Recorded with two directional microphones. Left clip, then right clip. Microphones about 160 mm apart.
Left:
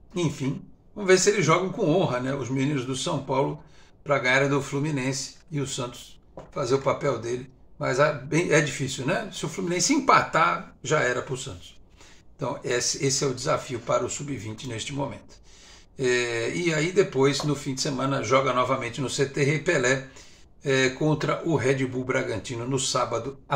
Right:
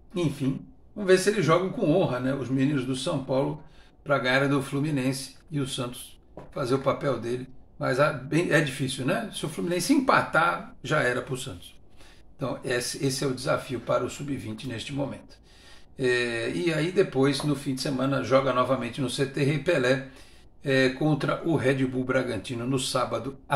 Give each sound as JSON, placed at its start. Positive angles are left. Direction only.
{"t": 0.1, "sound": "speech", "side_deg": -5}
{"t": 4.0, "sound": "speech", "side_deg": -10}
{"t": 16.0, "sound": "speech", "side_deg": -5}